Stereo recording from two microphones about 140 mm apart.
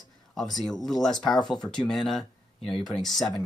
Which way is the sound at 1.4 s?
30° left (ahead or behind).